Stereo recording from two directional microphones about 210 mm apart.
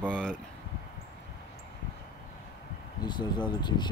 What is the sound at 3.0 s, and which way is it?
Speech, 20° left (ahead or behind).